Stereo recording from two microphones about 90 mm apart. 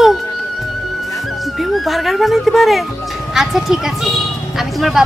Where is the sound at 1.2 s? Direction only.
Centre (ahead or behind).